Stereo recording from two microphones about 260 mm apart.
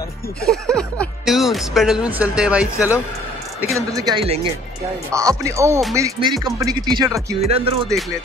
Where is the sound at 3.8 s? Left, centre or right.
Centre.